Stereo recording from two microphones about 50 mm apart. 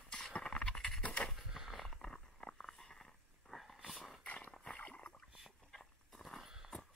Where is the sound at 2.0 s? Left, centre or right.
Centre.